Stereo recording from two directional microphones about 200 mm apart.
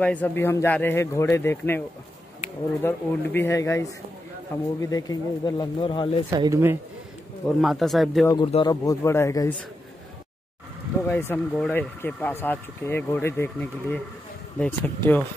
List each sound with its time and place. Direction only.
0.0 s speech: 5° left (ahead or behind)
2.8 s speech: 10° left (ahead or behind)
6.3 s speech: 15° right (ahead or behind)
7.4 s speech: centre (ahead or behind)
8.5 s speech: 25° left (ahead or behind)
11.1 s speech: 10° left (ahead or behind)